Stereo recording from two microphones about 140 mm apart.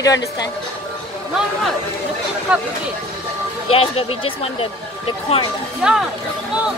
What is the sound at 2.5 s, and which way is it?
Speech, 10° right (ahead or behind).